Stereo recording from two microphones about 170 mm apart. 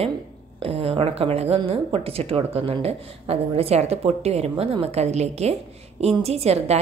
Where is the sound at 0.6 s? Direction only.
35° right (ahead or behind).